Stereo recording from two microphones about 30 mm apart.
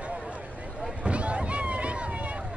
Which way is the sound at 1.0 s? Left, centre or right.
Right.